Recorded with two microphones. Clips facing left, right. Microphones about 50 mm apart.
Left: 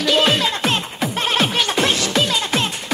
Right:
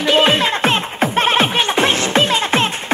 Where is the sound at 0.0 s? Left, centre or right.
Right.